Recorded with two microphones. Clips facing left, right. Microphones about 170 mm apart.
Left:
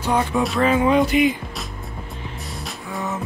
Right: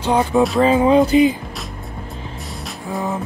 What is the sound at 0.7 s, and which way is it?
Music, 35° right (ahead or behind).